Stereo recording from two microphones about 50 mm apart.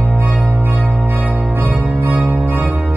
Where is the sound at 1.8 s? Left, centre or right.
Right.